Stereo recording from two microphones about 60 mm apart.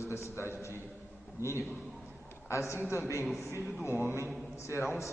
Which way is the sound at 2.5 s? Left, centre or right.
Left.